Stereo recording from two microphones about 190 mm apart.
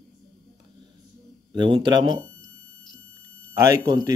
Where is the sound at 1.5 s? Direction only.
25° right (ahead or behind).